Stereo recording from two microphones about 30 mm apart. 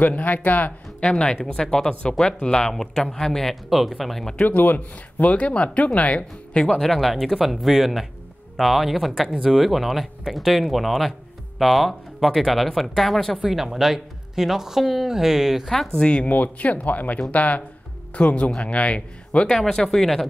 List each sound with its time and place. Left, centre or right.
0.0 s speech: left
1.0 s speech: left
3.1 s speech: centre
4.4 s speech: left
6.5 s speech: left
7.0 s speech: centre
13.4 s speech: centre
16.0 s speech: left
16.3 s speech: left
18.1 s speech: left
19.5 s speech: centre